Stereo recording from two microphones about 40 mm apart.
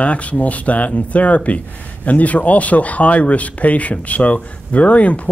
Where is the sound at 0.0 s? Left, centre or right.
Left.